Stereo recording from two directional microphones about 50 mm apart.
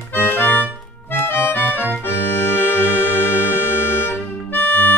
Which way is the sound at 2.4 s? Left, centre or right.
Left.